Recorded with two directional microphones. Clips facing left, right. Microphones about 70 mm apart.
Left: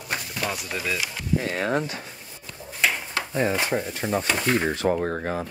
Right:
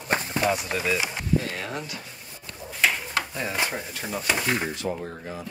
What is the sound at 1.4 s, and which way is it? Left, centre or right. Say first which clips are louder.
Speech: left 7 dB; left.